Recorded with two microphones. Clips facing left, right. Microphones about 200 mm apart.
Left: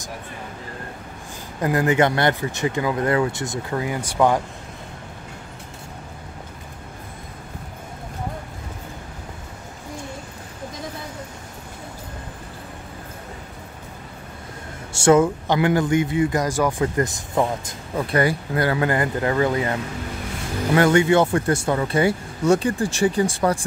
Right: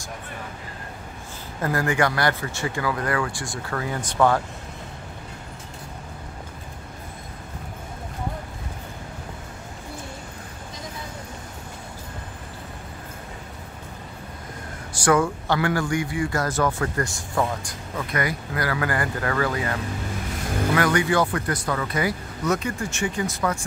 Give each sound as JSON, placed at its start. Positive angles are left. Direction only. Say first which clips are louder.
{"t": 1.6, "sound": "a man's voice", "louder": "left 4 dB", "side_deg": 20}
{"t": 14.9, "sound": "a man's voice", "louder": "left 5 dB", "side_deg": 25}